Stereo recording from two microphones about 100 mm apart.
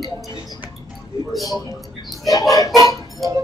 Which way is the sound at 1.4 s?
40° left (ahead or behind).